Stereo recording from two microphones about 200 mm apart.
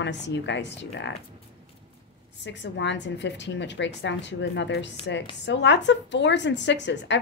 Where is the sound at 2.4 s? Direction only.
60° left (ahead or behind).